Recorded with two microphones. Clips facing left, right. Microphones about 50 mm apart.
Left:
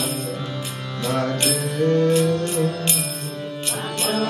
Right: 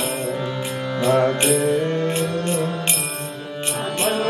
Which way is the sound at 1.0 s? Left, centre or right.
Centre.